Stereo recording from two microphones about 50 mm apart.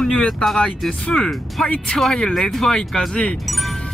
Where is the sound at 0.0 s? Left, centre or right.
Centre.